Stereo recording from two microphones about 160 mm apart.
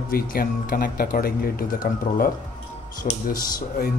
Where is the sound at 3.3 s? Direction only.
65° left (ahead or behind).